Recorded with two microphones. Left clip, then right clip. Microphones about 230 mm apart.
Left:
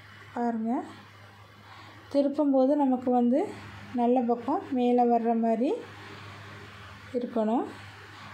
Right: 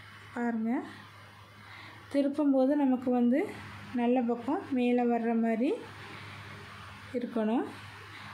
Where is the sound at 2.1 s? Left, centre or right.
Centre.